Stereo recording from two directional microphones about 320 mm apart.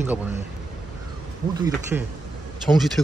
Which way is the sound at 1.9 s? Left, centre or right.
Centre.